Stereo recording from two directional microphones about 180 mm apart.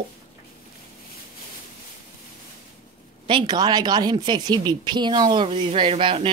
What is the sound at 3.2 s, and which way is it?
Speech, 25° right (ahead or behind).